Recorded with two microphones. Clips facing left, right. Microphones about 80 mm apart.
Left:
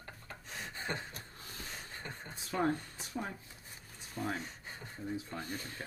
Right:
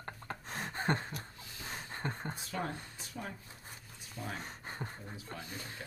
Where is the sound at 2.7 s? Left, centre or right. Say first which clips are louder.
Left 7 dB; left.